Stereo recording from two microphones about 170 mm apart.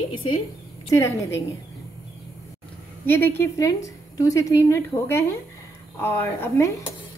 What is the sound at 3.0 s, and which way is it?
Speech, 10° left (ahead or behind).